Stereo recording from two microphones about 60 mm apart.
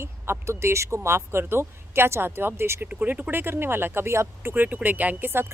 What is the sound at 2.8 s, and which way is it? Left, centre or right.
Speech, right.